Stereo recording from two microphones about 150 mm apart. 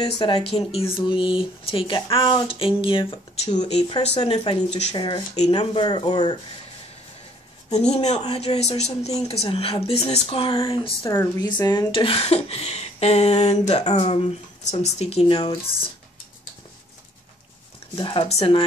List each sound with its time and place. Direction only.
0.2 s speech: 40° left (ahead or behind)
3.4 s speech: 45° left (ahead or behind)
4.9 s speech: 35° left (ahead or behind)
7.7 s speech: 45° left (ahead or behind)
11.1 s speech: 20° left (ahead or behind)
11.9 s speech: 35° left (ahead or behind)
17.9 s speech: 35° left (ahead or behind)